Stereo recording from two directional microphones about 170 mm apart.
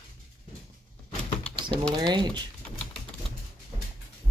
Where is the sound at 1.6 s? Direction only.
30° right (ahead or behind).